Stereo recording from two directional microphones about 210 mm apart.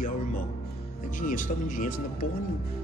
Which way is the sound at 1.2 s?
40° left (ahead or behind).